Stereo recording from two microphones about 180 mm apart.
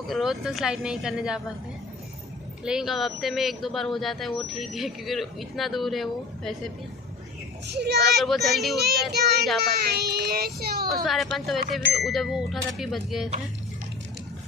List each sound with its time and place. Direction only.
0.0 s speech: centre (ahead or behind)
2.6 s speech: 5° right (ahead or behind)
7.6 s a child's voice: 70° right (ahead or behind)
8.2 s speech: centre (ahead or behind)
8.7 s speech: 60° right (ahead or behind)
10.9 s speech: centre (ahead or behind)